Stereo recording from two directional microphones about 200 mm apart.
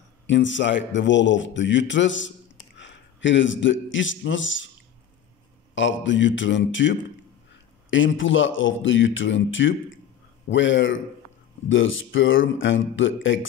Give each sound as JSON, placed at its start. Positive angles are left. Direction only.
{"t": 0.3, "sound": "a man's voice", "side_deg": 65}
{"t": 5.8, "sound": "a man's voice", "side_deg": 70}